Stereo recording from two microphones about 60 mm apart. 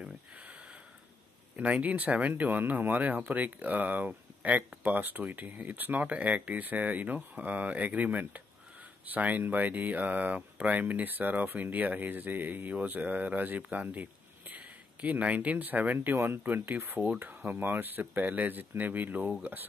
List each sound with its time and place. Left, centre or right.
1.6 s speech: right